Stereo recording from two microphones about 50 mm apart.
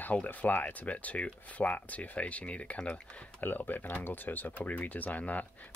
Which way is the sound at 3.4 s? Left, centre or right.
Left.